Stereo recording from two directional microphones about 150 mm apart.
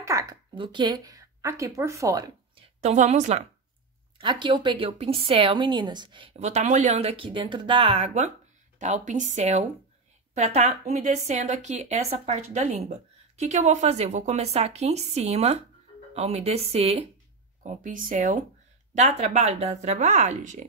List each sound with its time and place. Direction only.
0.0 s a sound: 20° right (ahead or behind)
0.6 s speech: 30° right (ahead or behind)
2.5 s a sound: 45° right (ahead or behind)
4.2 s a woman's voice: 30° right (ahead or behind)
6.4 s a woman's voice: 50° right (ahead or behind)
17.6 s speech: 60° right (ahead or behind)
18.9 s a woman's voice: 50° right (ahead or behind)